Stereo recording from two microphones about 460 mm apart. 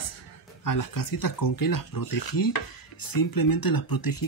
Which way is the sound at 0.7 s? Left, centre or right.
Left.